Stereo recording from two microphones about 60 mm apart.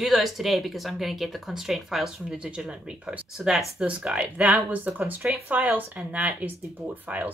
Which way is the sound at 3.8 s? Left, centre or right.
Right.